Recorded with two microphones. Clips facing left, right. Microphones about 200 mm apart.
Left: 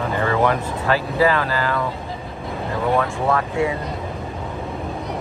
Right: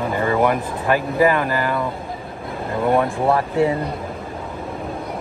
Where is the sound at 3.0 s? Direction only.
30° right (ahead or behind).